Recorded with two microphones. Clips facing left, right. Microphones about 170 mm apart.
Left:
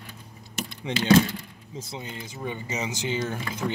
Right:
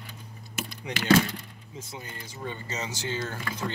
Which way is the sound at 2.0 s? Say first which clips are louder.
Left 3 dB; 15° left (ahead or behind).